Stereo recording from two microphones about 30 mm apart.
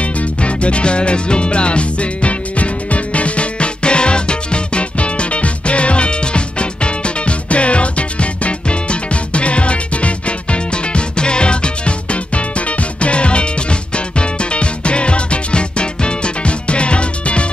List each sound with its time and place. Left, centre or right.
0.0 s music: left